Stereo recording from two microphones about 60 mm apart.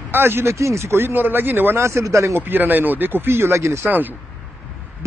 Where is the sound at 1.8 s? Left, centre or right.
Right.